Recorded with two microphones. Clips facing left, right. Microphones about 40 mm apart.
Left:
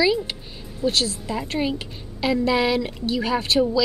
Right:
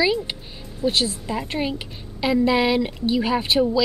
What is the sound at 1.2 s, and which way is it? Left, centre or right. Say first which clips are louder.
A woman's voice: left 1 dB; centre.